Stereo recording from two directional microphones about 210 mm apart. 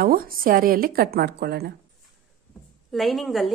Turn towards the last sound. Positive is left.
turn(degrees=0)  # may be behind; listen again after turning